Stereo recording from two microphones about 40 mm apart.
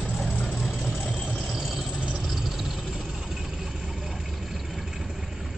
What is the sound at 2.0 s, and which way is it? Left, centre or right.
Vehicle, right.